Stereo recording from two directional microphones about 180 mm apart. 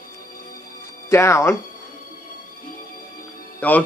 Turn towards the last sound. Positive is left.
turn(degrees=10)  # may be behind; listen again after turning